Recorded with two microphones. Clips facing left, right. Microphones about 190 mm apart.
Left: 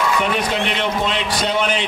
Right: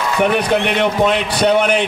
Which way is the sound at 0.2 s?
55° right (ahead or behind).